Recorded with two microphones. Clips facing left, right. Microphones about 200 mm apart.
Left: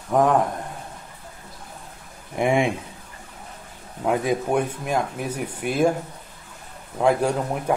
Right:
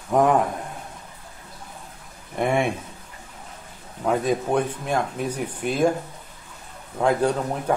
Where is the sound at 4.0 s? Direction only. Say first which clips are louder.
Even; 10° left (ahead or behind).